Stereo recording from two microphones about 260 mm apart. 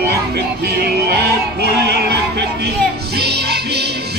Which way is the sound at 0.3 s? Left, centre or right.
Right.